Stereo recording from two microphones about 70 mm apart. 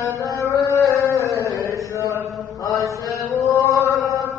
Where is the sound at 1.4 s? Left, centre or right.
Left.